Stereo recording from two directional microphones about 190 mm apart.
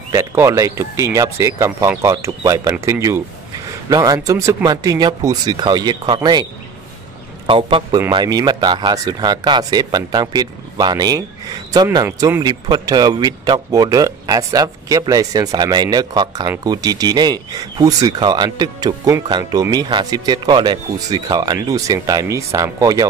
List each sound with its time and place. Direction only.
0.1 s speech: 15° right (ahead or behind)
7.4 s speech: 25° right (ahead or behind)